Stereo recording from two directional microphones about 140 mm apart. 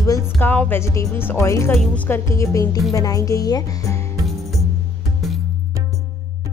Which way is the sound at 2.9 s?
25° left (ahead or behind).